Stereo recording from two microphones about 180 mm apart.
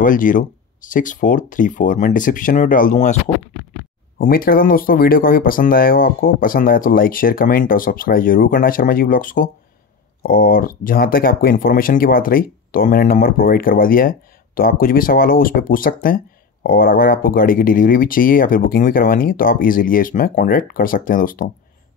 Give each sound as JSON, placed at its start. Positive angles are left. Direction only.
{"t": 0.0, "sound": "speech", "side_deg": 45}
{"t": 4.2, "sound": "speech", "side_deg": 50}